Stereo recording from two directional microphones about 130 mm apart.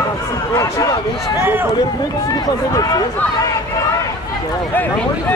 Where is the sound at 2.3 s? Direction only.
30° left (ahead or behind).